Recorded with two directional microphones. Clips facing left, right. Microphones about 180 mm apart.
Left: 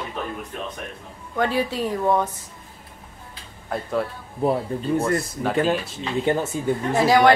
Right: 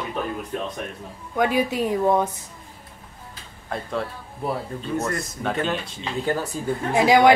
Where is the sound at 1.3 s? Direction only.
15° right (ahead or behind).